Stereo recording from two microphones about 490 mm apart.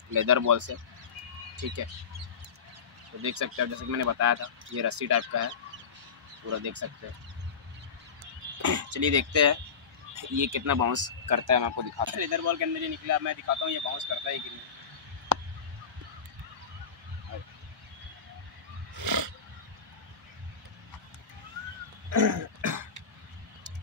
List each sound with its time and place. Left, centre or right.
0.1 s speech: right
3.2 s speech: right
6.5 s speech: right
8.5 s speech: right
15.3 s a sound: right
18.9 s wild animals: right
22.1 s throat clearing: right